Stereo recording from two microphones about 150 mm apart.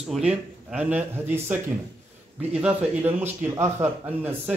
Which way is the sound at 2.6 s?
10° right (ahead or behind).